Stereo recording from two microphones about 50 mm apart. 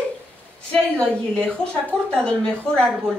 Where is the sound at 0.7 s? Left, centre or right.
Centre.